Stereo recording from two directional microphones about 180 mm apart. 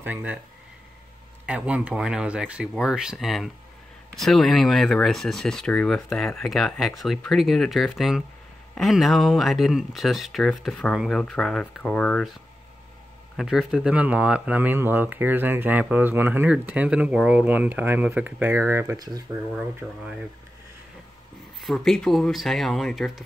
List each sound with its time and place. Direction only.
0.0 s speech: 10° right (ahead or behind)
1.4 s speech: 5° right (ahead or behind)
13.4 s speech: centre (ahead or behind); by 19.2 s 20° right (ahead or behind)
19.8 s speech: centre (ahead or behind)
21.6 s speech: 5° left (ahead or behind)